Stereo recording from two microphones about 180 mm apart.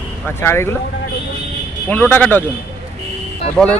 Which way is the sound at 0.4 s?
15° left (ahead or behind).